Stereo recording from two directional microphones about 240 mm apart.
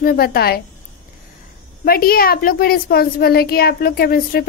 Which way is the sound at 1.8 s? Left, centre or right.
Left.